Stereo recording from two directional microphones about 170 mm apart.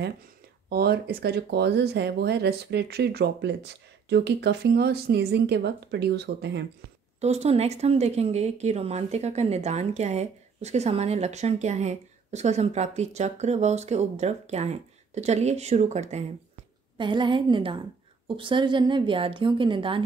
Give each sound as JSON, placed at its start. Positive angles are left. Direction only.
{"t": 0.7, "sound": "speech", "side_deg": -65}
{"t": 7.2, "sound": "speech", "side_deg": -40}
{"t": 16.9, "sound": "a woman's voice", "side_deg": -30}